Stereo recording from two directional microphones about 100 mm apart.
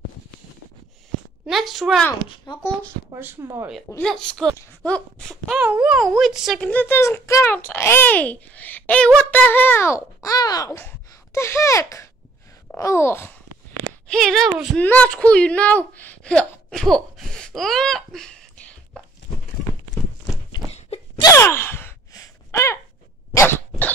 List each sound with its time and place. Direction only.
1.4 s speech: centre (ahead or behind)
2.2 s speech: 50° left (ahead or behind)
3.2 s speech: 25° right (ahead or behind)
4.0 s a woman's voice: 5° left (ahead or behind)
5.5 s speech: 15° right (ahead or behind)
6.6 s a woman's voice: 15° left (ahead or behind)
7.0 s a child's voice: 25° left (ahead or behind)
10.8 s a child's voice: 25° left (ahead or behind)
14.0 s speech: 5° left (ahead or behind)
14.8 s a woman's voice: 15° left (ahead or behind)
21.2 s gasp: 30° left (ahead or behind)
23.3 s dog: 20° left (ahead or behind)